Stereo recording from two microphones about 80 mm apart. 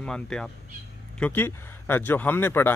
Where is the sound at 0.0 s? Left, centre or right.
Centre.